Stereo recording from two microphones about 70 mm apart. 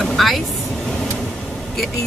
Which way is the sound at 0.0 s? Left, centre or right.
Centre.